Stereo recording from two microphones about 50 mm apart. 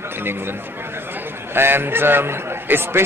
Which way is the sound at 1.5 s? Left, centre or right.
Right.